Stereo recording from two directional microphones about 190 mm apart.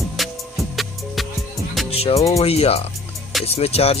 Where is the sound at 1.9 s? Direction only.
30° left (ahead or behind).